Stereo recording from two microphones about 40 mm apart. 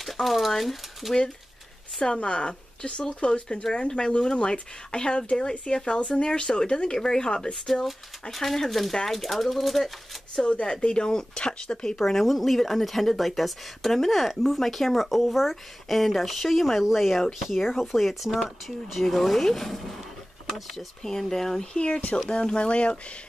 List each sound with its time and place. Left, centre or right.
0.0 s speech: centre
2.0 s speech: left
7.5 s speech: centre
10.4 s speech: left
12.0 s speech: centre
21.7 s speech: left